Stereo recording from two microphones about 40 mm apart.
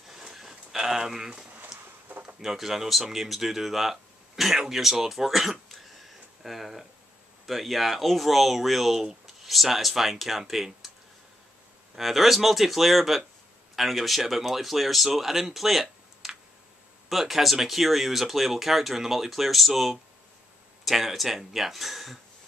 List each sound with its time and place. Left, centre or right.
0.1 s a sound: centre
2.4 s speech: centre
11.9 s speech: centre